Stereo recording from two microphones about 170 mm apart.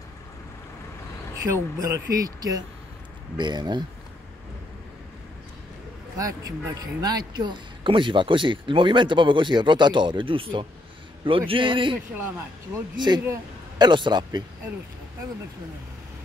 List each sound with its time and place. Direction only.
1.5 s speech: 20° right (ahead or behind)
6.1 s speech: 20° right (ahead or behind)
13.2 s speech: 20° right (ahead or behind)